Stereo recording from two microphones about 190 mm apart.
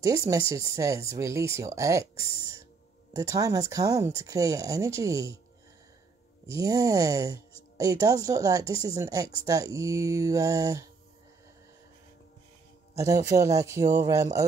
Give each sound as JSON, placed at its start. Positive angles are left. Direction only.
{"t": 0.0, "sound": "speech", "side_deg": -20}
{"t": 6.5, "sound": "speech", "side_deg": -20}
{"t": 13.0, "sound": "speech", "side_deg": -15}